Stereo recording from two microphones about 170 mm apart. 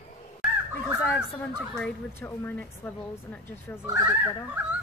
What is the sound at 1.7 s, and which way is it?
Speech, 5° left (ahead or behind).